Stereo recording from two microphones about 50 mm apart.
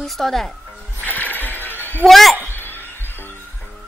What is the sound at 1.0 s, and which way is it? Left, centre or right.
Music, left.